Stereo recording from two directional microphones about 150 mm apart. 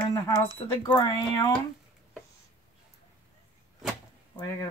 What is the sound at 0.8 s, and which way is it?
Speech, 30° left (ahead or behind).